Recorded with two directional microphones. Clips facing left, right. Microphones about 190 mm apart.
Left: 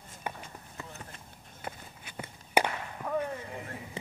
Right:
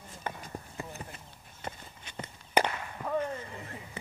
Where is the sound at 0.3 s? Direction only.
15° left (ahead or behind).